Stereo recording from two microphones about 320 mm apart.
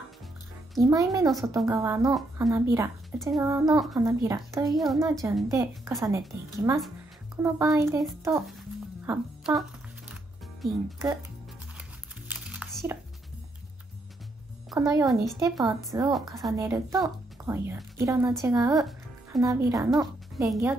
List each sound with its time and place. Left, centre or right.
0.7 s a woman's voice: centre
12.3 s music: centre
14.7 s a woman's voice: centre
16.1 s a woman's voice: centre